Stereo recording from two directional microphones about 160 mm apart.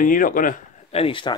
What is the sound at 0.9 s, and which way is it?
Speech, 35° left (ahead or behind).